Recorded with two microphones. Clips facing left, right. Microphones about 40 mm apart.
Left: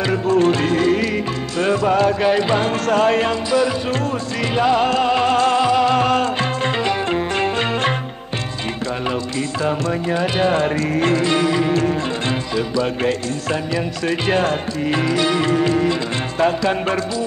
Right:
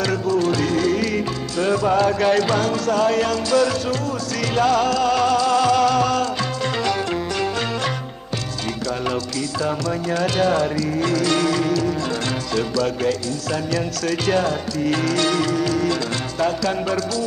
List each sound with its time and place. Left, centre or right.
0.3 s music: left
1.9 s speech: centre
2.7 s speech: left
3.4 s speech: centre; by 5.6 s left
5.6 s music: left
5.9 s music: left
9.8 s speech: left
11.2 s speech: left
14.9 s speech: left
15.4 s music: left